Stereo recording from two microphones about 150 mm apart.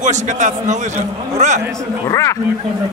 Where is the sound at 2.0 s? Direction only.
20° left (ahead or behind).